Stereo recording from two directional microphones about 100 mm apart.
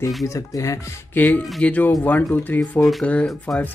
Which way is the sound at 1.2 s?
15° left (ahead or behind).